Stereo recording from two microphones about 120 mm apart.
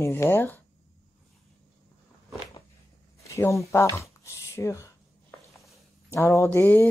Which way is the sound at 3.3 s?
25° left (ahead or behind).